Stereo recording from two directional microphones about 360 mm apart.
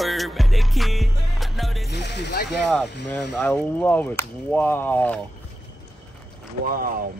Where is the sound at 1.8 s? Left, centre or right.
Left.